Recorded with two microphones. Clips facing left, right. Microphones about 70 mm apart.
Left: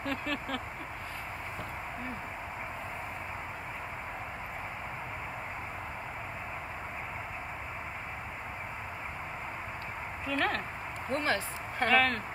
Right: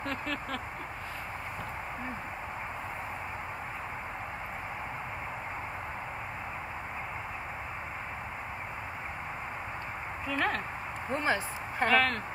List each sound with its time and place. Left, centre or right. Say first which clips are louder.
0.0 s vehicle: even; centre
10.2 s speech: even; centre
11.1 s a sound: right 1 dB; centre
11.9 s speech: even; centre